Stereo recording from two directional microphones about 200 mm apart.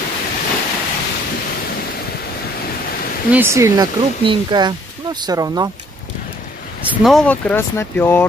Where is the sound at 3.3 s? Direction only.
15° right (ahead or behind).